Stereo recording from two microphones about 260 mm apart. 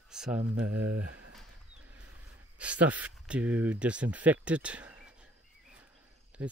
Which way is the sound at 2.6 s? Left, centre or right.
Centre.